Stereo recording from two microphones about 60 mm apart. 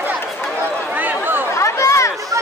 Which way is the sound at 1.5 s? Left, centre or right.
Left.